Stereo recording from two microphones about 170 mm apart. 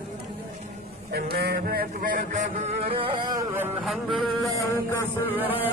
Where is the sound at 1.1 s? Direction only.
65° right (ahead or behind).